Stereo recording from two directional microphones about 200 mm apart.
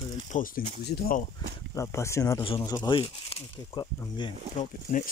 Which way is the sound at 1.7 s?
15° left (ahead or behind).